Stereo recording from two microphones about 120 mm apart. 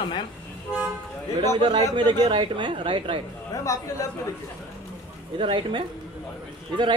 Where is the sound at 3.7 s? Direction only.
25° left (ahead or behind).